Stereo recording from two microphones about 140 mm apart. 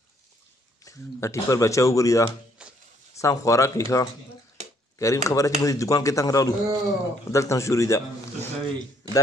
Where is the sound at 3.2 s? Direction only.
20° left (ahead or behind).